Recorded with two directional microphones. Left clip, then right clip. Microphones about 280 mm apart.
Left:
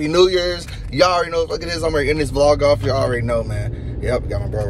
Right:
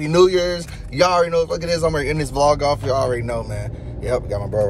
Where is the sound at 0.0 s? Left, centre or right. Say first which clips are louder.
Even; centre.